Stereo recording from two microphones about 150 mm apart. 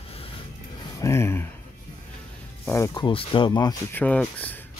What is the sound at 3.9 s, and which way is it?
Speech, 10° left (ahead or behind).